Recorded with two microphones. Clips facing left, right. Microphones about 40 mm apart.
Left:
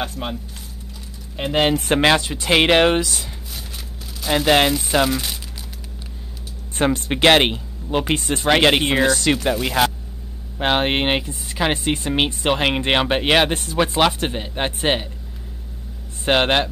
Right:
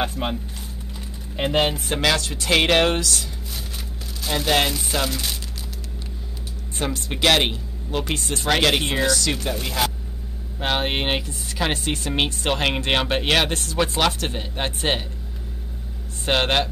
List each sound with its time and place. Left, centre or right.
0.0 s speech: centre
1.4 s speech: centre
2.0 s speech: left
2.2 s speech: centre
3.5 s a sound: centre
4.5 s speech: left
6.8 s speech: left
9.4 s speech: centre
16.3 s speech: centre